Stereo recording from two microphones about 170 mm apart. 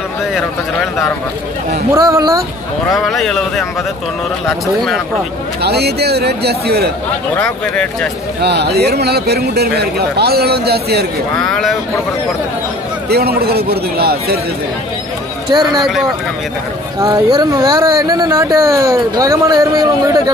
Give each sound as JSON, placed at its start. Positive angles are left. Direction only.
{"t": 2.0, "sound": "speech", "side_deg": -20}
{"t": 2.9, "sound": "speech", "side_deg": 0}
{"t": 5.6, "sound": "a man's voice", "side_deg": -70}
{"t": 7.3, "sound": "speech", "side_deg": 5}
{"t": 8.4, "sound": "a man's voice", "side_deg": -75}
{"t": 11.4, "sound": "speech", "side_deg": 5}
{"t": 13.1, "sound": "a man's voice", "side_deg": -65}
{"t": 15.5, "sound": "speech", "side_deg": -25}
{"t": 15.8, "sound": "speech", "side_deg": 0}
{"t": 17.0, "sound": "speech", "side_deg": -25}